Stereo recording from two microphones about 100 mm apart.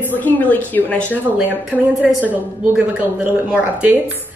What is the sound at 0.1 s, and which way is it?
Speech, 15° left (ahead or behind).